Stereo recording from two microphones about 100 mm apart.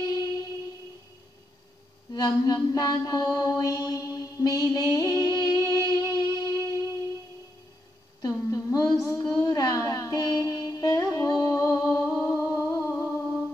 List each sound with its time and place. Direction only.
0.0 s music: 40° left (ahead or behind)
2.1 s mantra: 40° left (ahead or behind)
8.2 s a sound: 35° left (ahead or behind)